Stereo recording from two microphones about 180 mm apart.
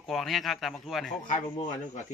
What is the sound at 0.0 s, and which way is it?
A man's voice, centre (ahead or behind).